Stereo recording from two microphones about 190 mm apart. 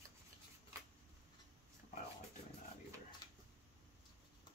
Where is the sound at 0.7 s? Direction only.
15° right (ahead or behind).